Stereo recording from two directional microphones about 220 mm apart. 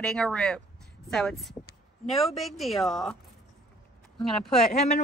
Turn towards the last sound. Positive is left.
turn(degrees=30)  # may be behind; listen again after turning